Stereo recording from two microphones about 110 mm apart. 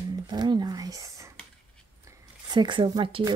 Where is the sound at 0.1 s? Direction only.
40° right (ahead or behind).